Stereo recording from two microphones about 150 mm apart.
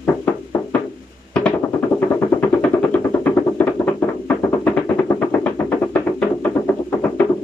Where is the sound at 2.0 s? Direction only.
15° left (ahead or behind).